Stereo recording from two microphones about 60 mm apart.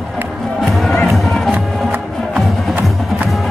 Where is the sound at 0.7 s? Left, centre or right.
Centre.